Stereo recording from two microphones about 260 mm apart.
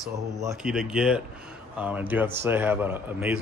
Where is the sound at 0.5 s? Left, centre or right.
Centre.